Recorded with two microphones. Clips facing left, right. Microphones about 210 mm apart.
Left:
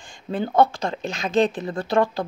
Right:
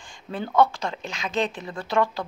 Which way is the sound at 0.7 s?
45° left (ahead or behind).